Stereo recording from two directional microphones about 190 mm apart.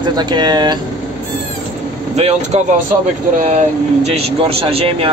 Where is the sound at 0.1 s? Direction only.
20° right (ahead or behind).